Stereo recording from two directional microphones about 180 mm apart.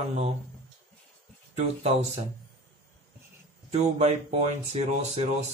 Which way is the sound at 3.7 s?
35° right (ahead or behind).